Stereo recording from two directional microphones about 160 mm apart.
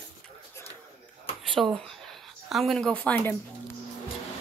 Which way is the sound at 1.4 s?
Centre (ahead or behind).